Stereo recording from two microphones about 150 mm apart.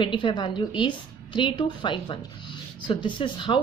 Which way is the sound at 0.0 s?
30° left (ahead or behind).